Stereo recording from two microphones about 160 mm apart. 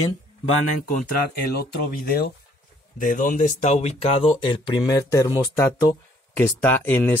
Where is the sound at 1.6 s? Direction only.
70° left (ahead or behind).